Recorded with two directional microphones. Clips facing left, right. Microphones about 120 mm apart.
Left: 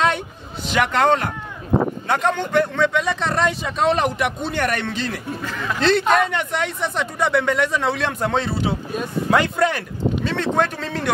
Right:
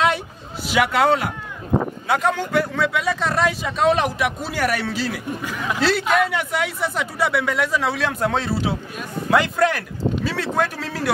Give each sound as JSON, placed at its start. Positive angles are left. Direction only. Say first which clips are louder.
{"t": 0.7, "sound": "a man's voice", "louder": "even", "side_deg": -5}